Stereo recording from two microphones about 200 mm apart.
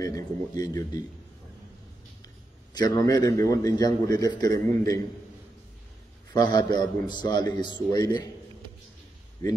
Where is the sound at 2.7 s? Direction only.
20° left (ahead or behind).